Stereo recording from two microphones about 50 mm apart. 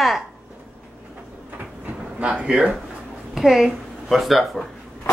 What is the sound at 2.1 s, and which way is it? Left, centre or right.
Speech, right.